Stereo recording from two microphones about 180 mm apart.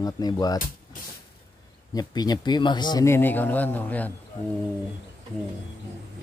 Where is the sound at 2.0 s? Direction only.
25° left (ahead or behind).